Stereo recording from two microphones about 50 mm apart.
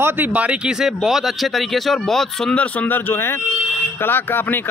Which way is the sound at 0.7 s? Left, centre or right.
Centre.